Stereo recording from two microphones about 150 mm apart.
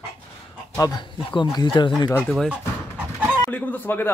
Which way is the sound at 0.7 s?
25° left (ahead or behind).